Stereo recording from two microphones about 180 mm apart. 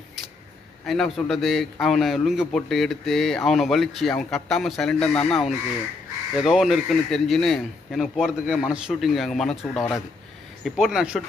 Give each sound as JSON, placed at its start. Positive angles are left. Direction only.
{"t": 0.8, "sound": "a man's voice", "side_deg": 0}